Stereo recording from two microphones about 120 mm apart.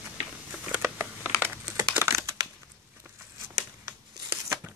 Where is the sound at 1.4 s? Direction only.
20° right (ahead or behind).